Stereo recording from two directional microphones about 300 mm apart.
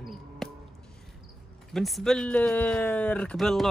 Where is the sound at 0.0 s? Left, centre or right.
Centre.